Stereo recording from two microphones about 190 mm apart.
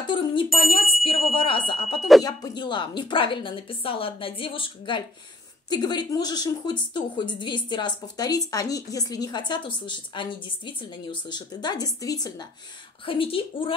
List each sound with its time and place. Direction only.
0.0 s speech: 25° left (ahead or behind)